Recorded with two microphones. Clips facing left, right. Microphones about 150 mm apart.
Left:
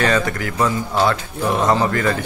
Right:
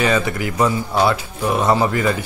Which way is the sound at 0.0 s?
10° right (ahead or behind).